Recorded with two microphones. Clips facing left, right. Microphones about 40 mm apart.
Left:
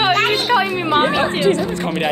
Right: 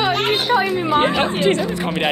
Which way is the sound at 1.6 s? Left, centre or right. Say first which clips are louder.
Left 1 dB; centre.